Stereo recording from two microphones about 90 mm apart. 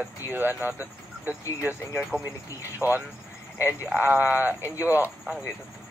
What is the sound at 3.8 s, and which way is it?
Speech, 15° right (ahead or behind).